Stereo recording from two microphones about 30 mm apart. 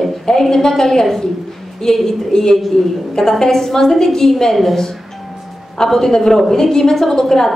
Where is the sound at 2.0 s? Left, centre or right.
Centre.